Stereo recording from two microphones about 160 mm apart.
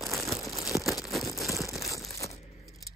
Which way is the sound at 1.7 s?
20° left (ahead or behind).